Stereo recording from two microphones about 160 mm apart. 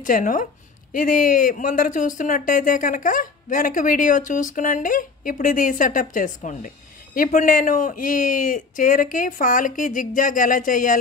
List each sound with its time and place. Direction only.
0.0 s speech: 55° left (ahead or behind)